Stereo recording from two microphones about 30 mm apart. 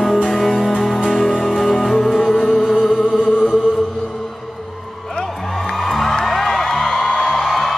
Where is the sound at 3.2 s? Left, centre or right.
Left.